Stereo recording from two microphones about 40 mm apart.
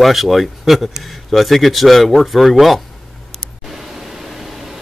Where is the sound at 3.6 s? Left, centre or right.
Centre.